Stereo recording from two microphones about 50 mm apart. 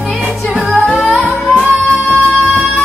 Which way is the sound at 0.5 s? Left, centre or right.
Centre.